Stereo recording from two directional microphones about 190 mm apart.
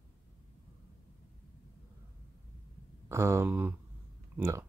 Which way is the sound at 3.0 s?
15° right (ahead or behind).